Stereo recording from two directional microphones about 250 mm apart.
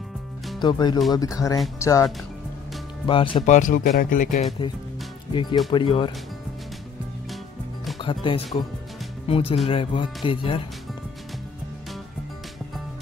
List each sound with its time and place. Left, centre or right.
0.6 s speech: centre
3.1 s speech: left
5.3 s speech: centre
8.0 s speech: centre